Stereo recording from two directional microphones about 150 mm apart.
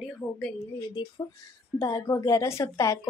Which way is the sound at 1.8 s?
20° left (ahead or behind).